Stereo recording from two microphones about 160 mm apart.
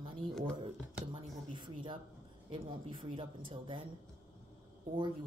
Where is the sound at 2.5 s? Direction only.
30° right (ahead or behind).